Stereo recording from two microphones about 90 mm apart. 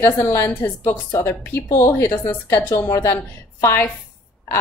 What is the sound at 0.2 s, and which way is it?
A woman's voice, 35° left (ahead or behind).